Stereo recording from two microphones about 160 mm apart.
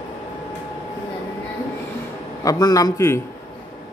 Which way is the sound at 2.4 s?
20° left (ahead or behind).